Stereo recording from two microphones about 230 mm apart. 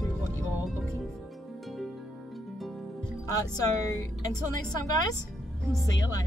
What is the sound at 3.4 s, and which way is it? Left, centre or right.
Speech, centre.